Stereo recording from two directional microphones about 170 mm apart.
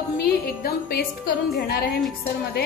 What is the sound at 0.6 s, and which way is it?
A woman's voice, 60° left (ahead or behind).